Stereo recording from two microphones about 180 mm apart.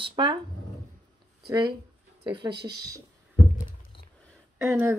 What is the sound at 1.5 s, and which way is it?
Speech, 25° right (ahead or behind).